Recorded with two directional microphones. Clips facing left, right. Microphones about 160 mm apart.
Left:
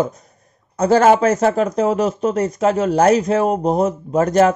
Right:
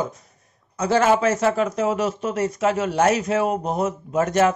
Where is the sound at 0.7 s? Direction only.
40° left (ahead or behind).